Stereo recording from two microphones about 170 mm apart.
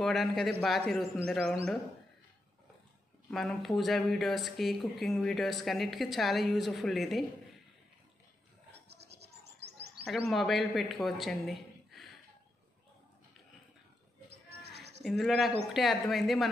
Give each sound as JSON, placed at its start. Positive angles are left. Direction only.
{"t": 0.0, "sound": "speech", "side_deg": 0}
{"t": 3.3, "sound": "speech", "side_deg": 0}
{"t": 8.8, "sound": "scratch", "side_deg": -75}
{"t": 9.4, "sound": "chirp", "side_deg": -75}
{"t": 10.3, "sound": "speech", "side_deg": 0}
{"t": 14.8, "sound": "a sound", "side_deg": -80}
{"t": 15.0, "sound": "speech", "side_deg": 0}